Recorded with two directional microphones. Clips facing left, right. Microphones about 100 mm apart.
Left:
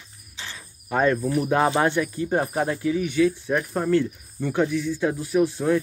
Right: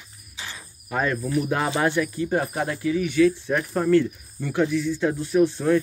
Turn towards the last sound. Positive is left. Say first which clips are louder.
# right 1 dB
turn(degrees=10)  # may be behind; listen again after turning